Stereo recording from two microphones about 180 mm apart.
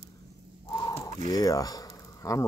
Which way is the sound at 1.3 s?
20° left (ahead or behind).